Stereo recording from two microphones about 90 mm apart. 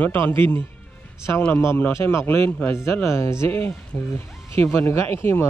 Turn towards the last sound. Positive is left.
turn(degrees=25)  # may be behind; listen again after turning